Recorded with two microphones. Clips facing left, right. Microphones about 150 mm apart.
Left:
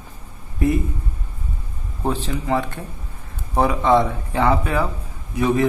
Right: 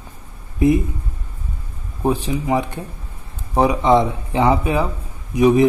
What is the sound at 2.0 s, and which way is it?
Speech, 15° right (ahead or behind).